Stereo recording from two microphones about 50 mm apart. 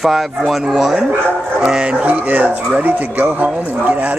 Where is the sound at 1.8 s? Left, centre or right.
Right.